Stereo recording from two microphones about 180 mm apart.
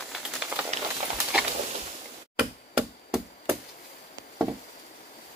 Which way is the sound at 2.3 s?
5° right (ahead or behind).